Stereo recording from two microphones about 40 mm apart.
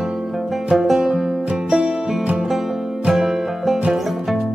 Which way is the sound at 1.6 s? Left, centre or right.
Right.